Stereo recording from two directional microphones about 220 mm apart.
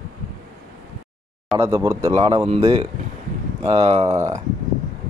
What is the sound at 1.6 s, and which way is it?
Speech, 10° right (ahead or behind).